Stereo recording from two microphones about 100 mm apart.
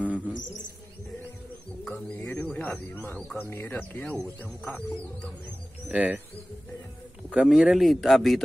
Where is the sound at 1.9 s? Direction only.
20° left (ahead or behind).